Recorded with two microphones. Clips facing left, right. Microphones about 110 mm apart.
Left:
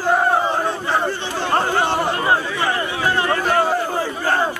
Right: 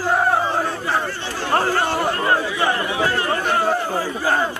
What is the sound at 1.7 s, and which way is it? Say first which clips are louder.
Chatter: left 1 dB; 15° left (ahead or behind).